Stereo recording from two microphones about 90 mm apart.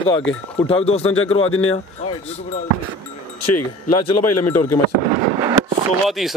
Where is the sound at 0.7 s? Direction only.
90° left.